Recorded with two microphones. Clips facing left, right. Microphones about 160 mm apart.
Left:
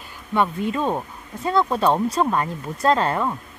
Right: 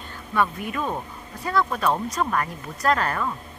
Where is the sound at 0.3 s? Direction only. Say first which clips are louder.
Left 3 dB; 25° left (ahead or behind).